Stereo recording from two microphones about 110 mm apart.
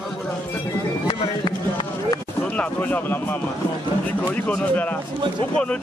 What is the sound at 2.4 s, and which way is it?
Speech, 15° left (ahead or behind).